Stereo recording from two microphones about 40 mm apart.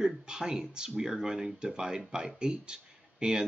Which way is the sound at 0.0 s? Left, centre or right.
Centre.